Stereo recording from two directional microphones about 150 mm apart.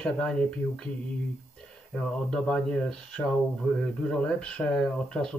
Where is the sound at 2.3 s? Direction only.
5° left (ahead or behind).